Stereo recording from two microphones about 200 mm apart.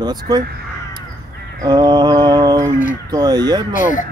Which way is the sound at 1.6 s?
20° right (ahead or behind).